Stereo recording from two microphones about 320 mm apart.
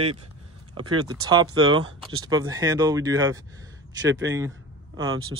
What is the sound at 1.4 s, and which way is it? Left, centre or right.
Speech, right.